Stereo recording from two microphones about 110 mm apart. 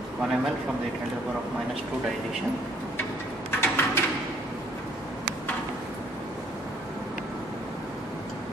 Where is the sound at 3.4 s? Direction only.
20° left (ahead or behind).